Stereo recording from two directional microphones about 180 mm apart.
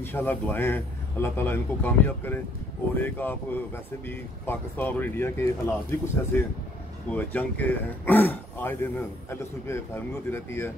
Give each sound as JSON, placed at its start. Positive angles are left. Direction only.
{"t": 0.0, "sound": "speech", "side_deg": 10}